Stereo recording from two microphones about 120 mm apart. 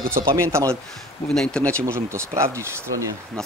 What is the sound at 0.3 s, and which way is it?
Speech, 25° right (ahead or behind).